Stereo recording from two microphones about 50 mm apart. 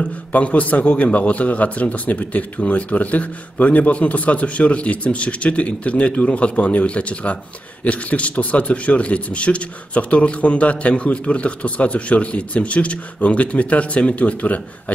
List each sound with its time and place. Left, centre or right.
0.0 s a man's voice: left